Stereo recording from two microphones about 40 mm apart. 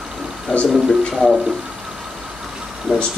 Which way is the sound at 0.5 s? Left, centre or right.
Left.